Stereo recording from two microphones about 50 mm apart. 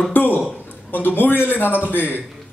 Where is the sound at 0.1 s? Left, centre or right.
Left.